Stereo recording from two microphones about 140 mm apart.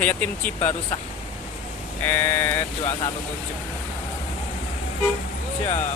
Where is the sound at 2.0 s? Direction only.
15° left (ahead or behind).